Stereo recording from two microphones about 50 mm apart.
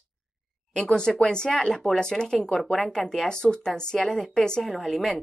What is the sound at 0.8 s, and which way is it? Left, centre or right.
Speech, centre.